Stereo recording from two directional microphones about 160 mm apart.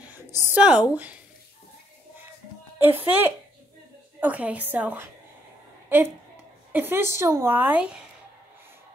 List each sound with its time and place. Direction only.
0.1 s a sound: 15° right (ahead or behind)
0.6 s a woman's voice: 5° right (ahead or behind)
3.1 s a woman's voice: 15° right (ahead or behind)